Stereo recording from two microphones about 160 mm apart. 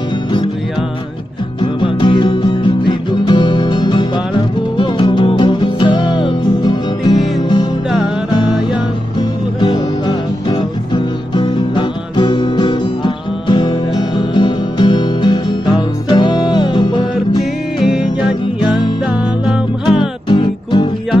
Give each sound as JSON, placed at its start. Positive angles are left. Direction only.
{"t": 1.6, "sound": "music", "side_deg": 30}
{"t": 9.6, "sound": "music", "side_deg": 30}
{"t": 19.9, "sound": "music", "side_deg": 30}